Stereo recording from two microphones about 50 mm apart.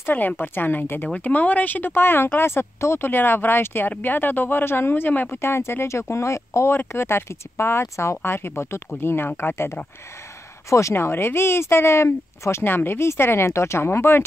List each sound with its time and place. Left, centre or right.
0.1 s a woman's voice: left
1.0 s speech: left
5.4 s speech: left
6.9 s speech: left
10.7 s speech: left
11.0 s speech: left
12.6 s speech: left
13.5 s speech: left